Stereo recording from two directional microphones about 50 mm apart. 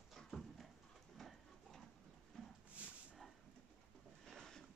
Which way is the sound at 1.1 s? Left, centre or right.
Centre.